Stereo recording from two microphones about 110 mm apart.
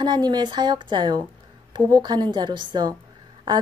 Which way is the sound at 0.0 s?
40° right (ahead or behind).